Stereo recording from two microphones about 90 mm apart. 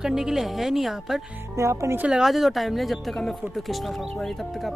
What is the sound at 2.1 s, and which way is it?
Speech, 5° right (ahead or behind).